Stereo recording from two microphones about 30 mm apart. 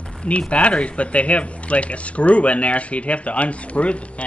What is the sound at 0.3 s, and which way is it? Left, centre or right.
Speech, left.